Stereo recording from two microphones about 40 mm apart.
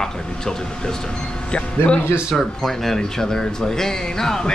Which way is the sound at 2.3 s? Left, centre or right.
Centre.